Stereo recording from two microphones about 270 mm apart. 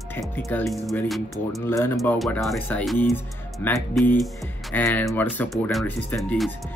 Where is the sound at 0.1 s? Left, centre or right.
Centre.